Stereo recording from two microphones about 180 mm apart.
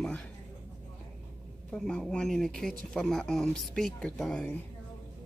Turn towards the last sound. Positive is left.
turn(degrees=5)  # may be behind; listen again after turning